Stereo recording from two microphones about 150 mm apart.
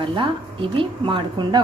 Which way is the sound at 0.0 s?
35° right (ahead or behind).